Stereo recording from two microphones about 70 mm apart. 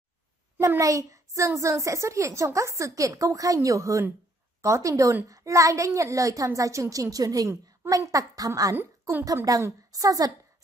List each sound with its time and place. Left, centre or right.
0.7 s a woman's voice: right